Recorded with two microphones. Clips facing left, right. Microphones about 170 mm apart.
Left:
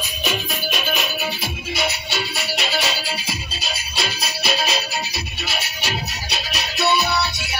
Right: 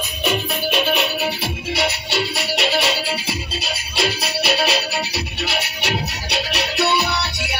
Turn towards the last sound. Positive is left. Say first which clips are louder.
# left 1 dB
turn(degrees=-65)  # may be behind; listen again after turning